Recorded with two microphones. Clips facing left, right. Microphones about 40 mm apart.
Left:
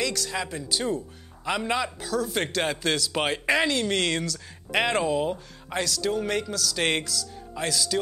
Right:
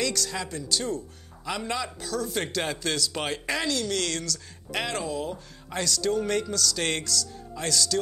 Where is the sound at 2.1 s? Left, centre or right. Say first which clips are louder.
Left 3 dB; centre; by 5.8 s left.